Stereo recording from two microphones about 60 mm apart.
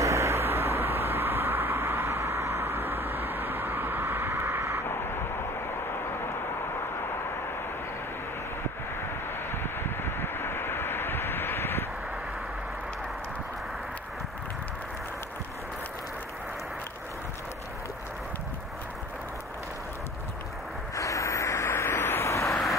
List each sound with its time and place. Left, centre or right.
0.0 s vehicle: right
9.5 s vehicle: left
20.9 s vehicle: left
21.6 s vehicle: left
22.3 s vehicle: left